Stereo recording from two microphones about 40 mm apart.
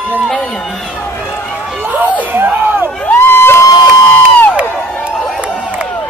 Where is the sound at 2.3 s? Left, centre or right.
Right.